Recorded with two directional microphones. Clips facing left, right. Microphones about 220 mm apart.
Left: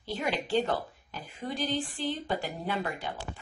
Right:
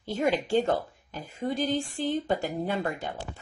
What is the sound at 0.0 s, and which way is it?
Speech, 45° right (ahead or behind).